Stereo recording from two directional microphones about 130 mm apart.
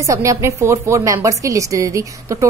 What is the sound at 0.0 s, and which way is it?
Speech, 25° right (ahead or behind).